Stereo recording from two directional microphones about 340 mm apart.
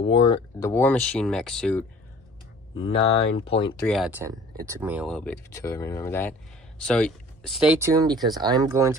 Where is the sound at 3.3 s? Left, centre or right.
Centre.